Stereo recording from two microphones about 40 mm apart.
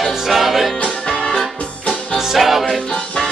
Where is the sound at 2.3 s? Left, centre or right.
Centre.